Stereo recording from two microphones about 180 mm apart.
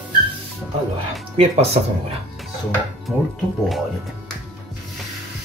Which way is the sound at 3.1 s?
Centre (ahead or behind).